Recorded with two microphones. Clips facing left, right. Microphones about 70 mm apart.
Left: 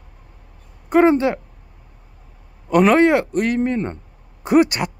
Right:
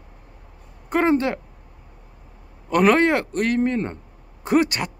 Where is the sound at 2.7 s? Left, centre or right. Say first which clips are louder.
Left 3 dB; centre.